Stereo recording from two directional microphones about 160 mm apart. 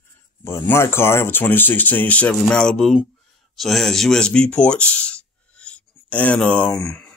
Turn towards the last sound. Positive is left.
turn(degrees=5)  # may be behind; listen again after turning